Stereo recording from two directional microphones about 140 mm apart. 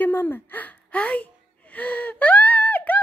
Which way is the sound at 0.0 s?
15° left (ahead or behind).